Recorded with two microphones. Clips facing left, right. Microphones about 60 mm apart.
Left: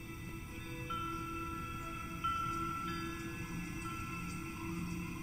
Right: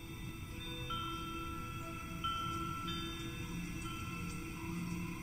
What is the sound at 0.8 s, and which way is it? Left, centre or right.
Music, left.